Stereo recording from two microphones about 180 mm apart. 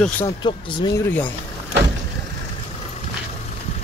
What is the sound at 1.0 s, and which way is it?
Speech, 10° left (ahead or behind).